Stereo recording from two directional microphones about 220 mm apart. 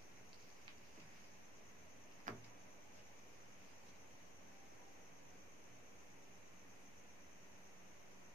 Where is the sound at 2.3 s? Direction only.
35° right (ahead or behind).